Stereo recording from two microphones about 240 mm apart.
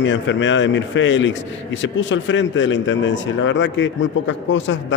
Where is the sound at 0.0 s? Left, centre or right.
Left.